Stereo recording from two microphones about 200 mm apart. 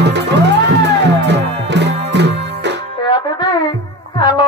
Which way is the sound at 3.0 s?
20° left (ahead or behind).